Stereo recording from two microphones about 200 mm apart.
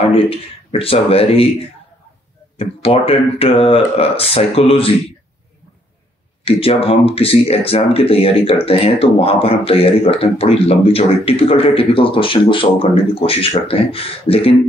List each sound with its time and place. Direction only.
0.0 s speech: 30° left (ahead or behind)
2.5 s speech: 30° left (ahead or behind)
6.4 s speech: 30° left (ahead or behind)